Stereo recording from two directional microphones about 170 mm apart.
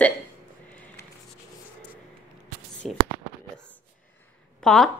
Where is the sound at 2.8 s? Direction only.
Centre (ahead or behind).